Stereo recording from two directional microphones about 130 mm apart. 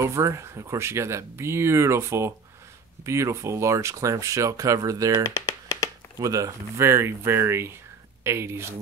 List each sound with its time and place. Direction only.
0.0 s speech: 20° right (ahead or behind)
5.3 s a sound: 25° left (ahead or behind)
6.1 s speech: 25° right (ahead or behind)